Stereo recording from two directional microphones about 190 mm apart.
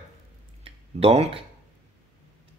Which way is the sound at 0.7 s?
30° right (ahead or behind).